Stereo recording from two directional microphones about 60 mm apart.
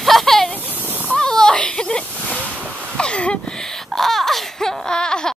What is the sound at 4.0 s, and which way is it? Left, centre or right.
Baby cry, centre.